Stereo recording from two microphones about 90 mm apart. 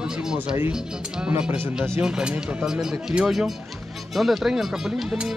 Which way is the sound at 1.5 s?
25° right (ahead or behind).